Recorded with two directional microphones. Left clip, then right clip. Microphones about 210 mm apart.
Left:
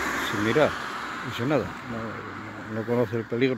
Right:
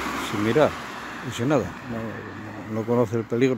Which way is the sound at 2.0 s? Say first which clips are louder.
Right 1 dB; 25° right (ahead or behind).